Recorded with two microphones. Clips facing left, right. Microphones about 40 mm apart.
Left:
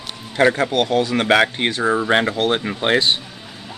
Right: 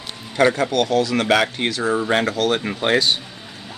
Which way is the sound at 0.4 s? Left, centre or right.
Left.